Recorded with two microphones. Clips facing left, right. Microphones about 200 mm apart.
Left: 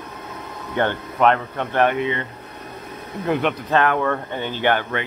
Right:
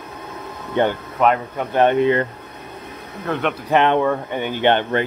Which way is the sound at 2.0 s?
45° right (ahead or behind).